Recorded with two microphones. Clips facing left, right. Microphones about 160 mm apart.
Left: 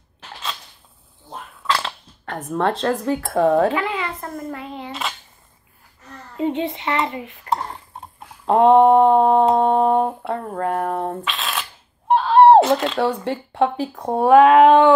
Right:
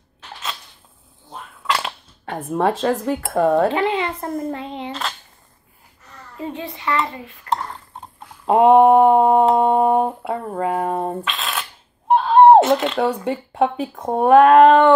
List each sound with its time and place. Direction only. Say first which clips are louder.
1.6 s speech: even; 5° right (ahead or behind)
3.7 s a sound: right 3 dB; 25° right (ahead or behind)
6.3 s dishes: left 7 dB; 20° left (ahead or behind)
8.5 s a sound: right 1 dB; 10° right (ahead or behind)
9.5 s speech: right 1 dB; 10° right (ahead or behind)
11.2 s shuffling cards: even; centre (ahead or behind)
12.2 s speech: right 1 dB; centre (ahead or behind)